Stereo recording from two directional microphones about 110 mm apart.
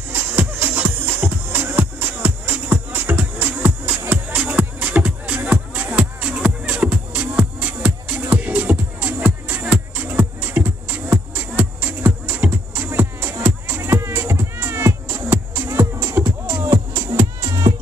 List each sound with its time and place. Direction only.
0.1 s music: 20° right (ahead or behind)